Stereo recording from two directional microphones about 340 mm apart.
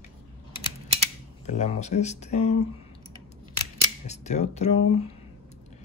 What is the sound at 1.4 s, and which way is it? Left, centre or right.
Speech, centre.